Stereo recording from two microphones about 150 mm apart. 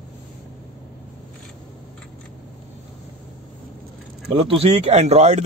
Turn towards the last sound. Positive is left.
turn(degrees=-50)  # may be behind; listen again after turning